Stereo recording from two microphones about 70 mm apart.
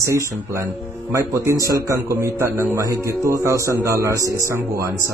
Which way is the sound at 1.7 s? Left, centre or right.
Right.